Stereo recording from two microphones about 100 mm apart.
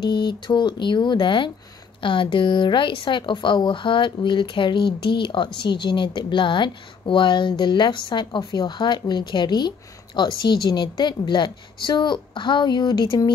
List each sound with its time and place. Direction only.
0.0 s a woman's voice: 50° left (ahead or behind)